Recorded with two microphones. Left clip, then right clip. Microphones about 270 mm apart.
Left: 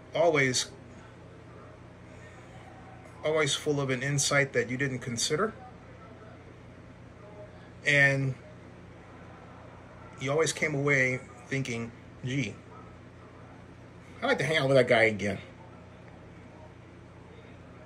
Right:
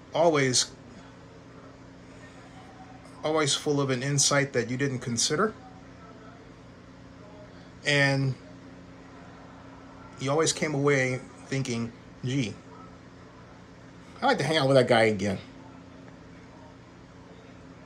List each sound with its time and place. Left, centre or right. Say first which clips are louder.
0.1 s speech: right 2 dB; centre
3.2 s speech: right 1 dB; centre
7.8 s speech: left 1 dB; centre
10.1 s speech: right 2 dB; centre
14.2 s speech: right 3 dB; centre